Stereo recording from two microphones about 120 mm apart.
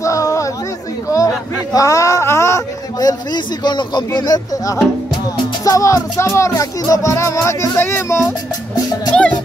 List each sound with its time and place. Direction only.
0.0 s chatter: 25° left (ahead or behind)
1.0 s a sound: 30° left (ahead or behind)
5.6 s speech: 25° left (ahead or behind)
9.1 s speech: 10° left (ahead or behind)